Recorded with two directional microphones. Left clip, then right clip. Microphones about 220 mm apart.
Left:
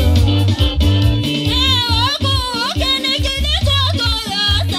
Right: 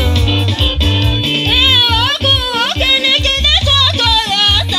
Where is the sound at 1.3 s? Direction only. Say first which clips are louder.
Right 6 dB; 55° left (ahead or behind).